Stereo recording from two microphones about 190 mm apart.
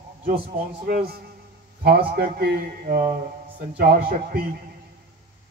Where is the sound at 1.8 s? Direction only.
55° right (ahead or behind).